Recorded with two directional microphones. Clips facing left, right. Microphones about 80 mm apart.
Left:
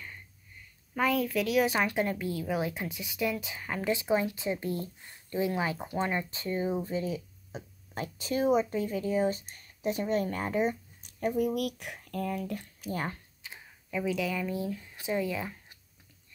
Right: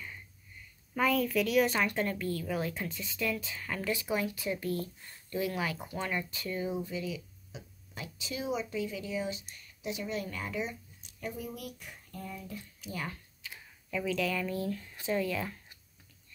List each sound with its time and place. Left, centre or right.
0.9 s a woman's voice: centre; by 12.6 s left
12.8 s speech: left
13.4 s speech: left